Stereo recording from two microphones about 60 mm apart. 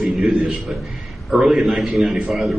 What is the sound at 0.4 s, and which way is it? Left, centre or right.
A man's voice, centre.